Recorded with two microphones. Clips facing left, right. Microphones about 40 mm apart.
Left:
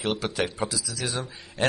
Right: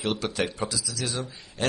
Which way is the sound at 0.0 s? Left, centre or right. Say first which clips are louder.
Left 1 dB; centre.